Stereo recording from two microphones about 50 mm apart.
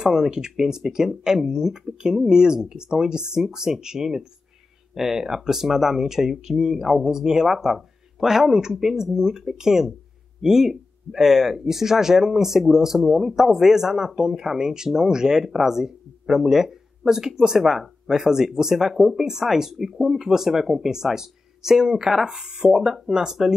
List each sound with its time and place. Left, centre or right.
0.0 s speech: centre